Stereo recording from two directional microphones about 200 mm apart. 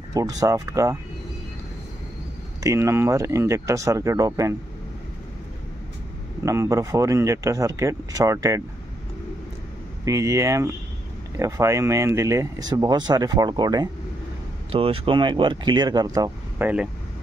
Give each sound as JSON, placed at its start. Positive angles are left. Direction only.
{"t": 0.1, "sound": "speech", "side_deg": -15}
{"t": 2.6, "sound": "speech", "side_deg": -15}
{"t": 6.4, "sound": "speech", "side_deg": -15}
{"t": 10.0, "sound": "speech", "side_deg": -15}